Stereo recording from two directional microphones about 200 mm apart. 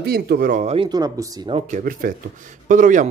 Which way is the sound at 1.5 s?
40° right (ahead or behind).